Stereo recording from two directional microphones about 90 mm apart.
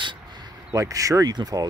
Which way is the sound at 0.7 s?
40° right (ahead or behind).